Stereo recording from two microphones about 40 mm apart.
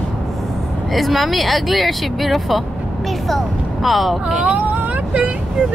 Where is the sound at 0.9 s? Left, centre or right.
Centre.